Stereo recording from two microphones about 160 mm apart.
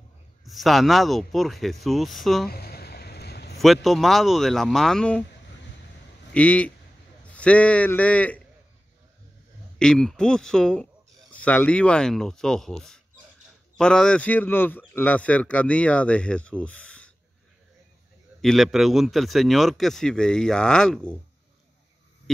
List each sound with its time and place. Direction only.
0.5 s a man's voice: centre (ahead or behind)
2.5 s a sound: 75° left (ahead or behind); by 3.5 s 90° left
3.5 s a man's voice: centre (ahead or behind)
6.3 s a man's voice: 10° left (ahead or behind)
9.8 s a man's voice: 5° left (ahead or behind)
18.4 s a man's voice: centre (ahead or behind)